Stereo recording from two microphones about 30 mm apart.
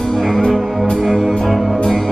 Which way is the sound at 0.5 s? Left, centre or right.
Centre.